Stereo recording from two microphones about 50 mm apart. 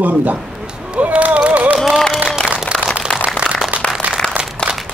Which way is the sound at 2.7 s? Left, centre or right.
Centre.